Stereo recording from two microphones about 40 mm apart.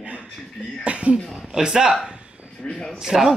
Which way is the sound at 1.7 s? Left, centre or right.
Centre.